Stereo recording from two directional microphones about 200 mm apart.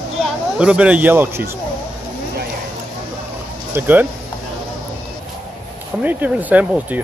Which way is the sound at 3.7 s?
10° right (ahead or behind).